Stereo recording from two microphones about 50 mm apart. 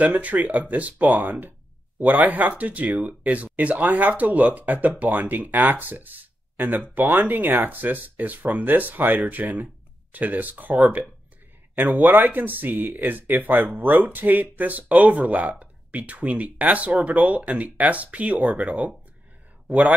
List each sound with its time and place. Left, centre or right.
0.0 s speech: right